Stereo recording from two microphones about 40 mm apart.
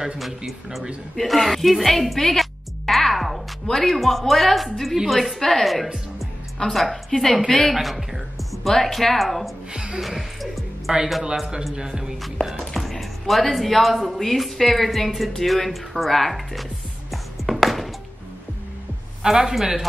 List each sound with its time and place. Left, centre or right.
1.1 s speech: centre
2.9 s music: centre
3.6 s a woman's voice: centre
7.7 s a woman's voice: centre
10.9 s speech: centre
12.5 s speech: centre
17.1 s music: centre
19.2 s a man's voice: centre